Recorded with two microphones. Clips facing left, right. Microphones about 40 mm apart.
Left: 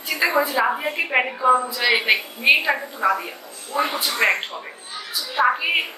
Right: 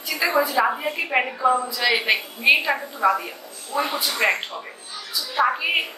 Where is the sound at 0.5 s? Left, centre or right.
Centre.